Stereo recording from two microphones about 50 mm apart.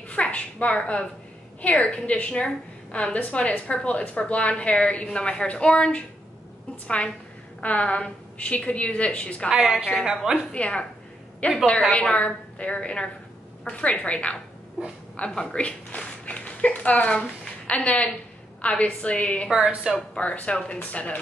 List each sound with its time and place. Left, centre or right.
0.1 s a sound: left
1.6 s a woman's voice: left
7.6 s a woman's voice: left
9.5 s a woman's voice: centre
10.5 s a woman's voice: left
19.5 s a woman's voice: centre
20.2 s a woman's voice: left